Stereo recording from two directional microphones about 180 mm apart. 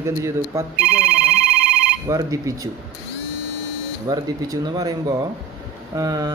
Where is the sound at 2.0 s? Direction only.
20° right (ahead or behind).